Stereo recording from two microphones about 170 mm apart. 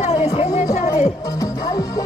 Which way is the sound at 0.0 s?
35° left (ahead or behind).